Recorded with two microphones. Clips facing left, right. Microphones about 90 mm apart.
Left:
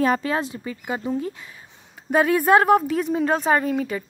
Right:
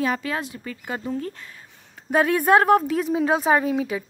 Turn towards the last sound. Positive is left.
turn(degrees=-5)  # may be behind; listen again after turning